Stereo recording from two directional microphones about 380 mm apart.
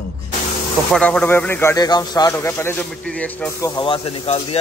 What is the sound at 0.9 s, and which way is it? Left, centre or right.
A man's voice, centre.